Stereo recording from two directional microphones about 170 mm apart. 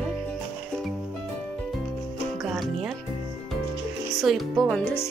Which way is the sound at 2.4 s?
Centre (ahead or behind).